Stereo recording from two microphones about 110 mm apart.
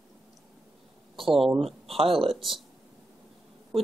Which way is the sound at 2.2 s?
Centre (ahead or behind).